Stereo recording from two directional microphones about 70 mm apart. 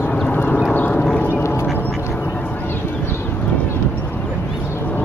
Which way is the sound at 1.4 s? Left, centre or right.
Left.